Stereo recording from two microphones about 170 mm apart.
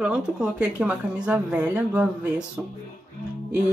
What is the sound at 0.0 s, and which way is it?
Speech, 5° right (ahead or behind).